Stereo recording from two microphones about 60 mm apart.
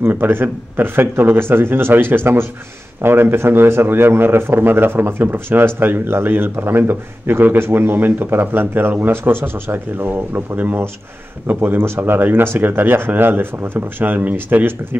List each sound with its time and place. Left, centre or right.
0.0 s speech: right
11.8 s speech: right